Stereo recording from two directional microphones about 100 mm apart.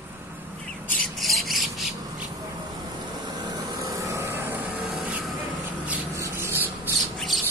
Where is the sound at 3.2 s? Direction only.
45° right (ahead or behind).